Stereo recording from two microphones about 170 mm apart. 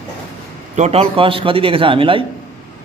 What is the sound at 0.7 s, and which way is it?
A man's voice, 40° right (ahead or behind).